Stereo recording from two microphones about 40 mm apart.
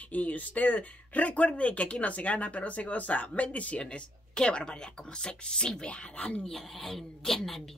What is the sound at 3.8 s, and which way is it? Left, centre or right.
Speech, left.